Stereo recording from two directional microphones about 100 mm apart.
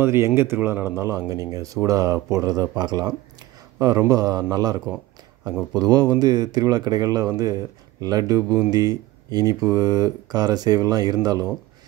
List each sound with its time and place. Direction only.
0.0 s speech: 25° right (ahead or behind)